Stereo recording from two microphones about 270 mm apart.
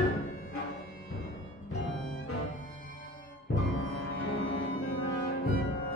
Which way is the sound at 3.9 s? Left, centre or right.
Left.